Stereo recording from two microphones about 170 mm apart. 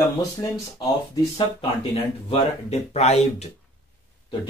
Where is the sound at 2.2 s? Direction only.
40° left (ahead or behind).